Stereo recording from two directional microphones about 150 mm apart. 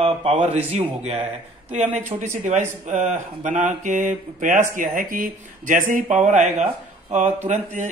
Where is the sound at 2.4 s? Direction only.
55° right (ahead or behind).